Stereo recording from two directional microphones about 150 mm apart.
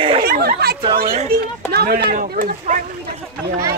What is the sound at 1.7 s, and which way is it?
Speech, 90° right.